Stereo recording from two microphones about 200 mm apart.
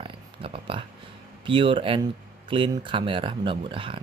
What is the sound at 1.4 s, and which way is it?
Speech, 25° right (ahead or behind).